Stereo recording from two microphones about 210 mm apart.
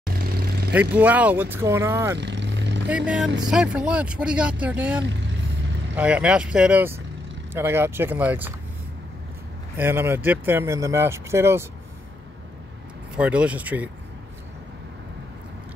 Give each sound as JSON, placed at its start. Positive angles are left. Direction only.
{"t": 0.0, "sound": "vehicle", "side_deg": -45}
{"t": 0.7, "sound": "speech", "side_deg": -5}
{"t": 2.1, "sound": "vehicle", "side_deg": -55}
{"t": 3.1, "sound": "speech", "side_deg": -5}
{"t": 9.8, "sound": "speech", "side_deg": -10}
{"t": 13.1, "sound": "speech", "side_deg": -5}